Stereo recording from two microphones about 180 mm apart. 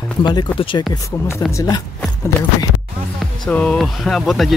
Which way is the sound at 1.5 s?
15° left (ahead or behind).